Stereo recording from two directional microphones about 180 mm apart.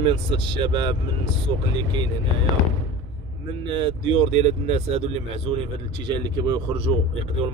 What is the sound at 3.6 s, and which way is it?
Speech, 25° right (ahead or behind).